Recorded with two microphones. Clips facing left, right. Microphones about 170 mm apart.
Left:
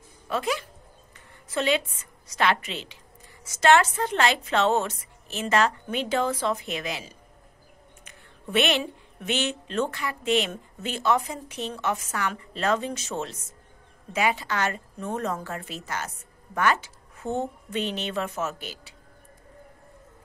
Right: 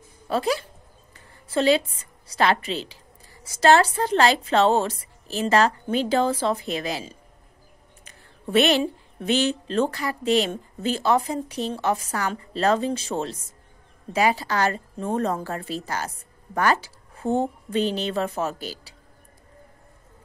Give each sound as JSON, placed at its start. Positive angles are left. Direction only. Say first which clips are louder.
{"t": 0.3, "sound": "a woman's voice", "louder": "right 4 dB", "side_deg": -35}